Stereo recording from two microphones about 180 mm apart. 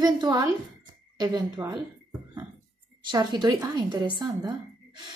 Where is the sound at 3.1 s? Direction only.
25° right (ahead or behind).